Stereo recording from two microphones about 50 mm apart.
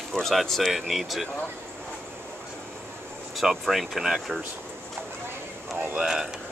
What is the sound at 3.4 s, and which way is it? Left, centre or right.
Speech, centre.